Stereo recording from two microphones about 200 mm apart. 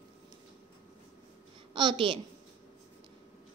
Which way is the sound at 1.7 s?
25° right (ahead or behind).